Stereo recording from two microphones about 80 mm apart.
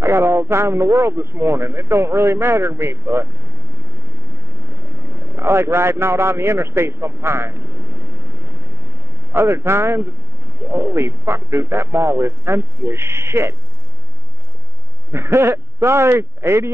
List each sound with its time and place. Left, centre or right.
0.0 s a man's voice: right
5.1 s a man's voice: right
9.3 s a man's voice: right
15.0 s a man's voice: right